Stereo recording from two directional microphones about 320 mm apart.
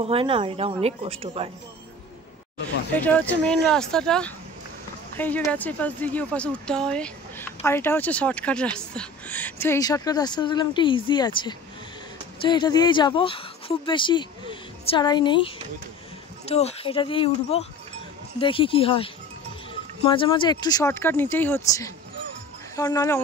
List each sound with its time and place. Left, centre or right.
0.0 s speech: centre
2.9 s a woman's voice: centre